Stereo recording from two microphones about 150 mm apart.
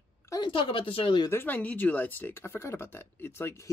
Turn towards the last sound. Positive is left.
turn(degrees=15)  # may be behind; listen again after turning